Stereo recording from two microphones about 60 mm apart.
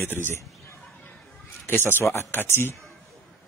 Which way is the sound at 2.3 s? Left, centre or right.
Left.